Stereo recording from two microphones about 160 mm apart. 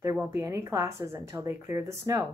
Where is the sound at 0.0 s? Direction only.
20° right (ahead or behind).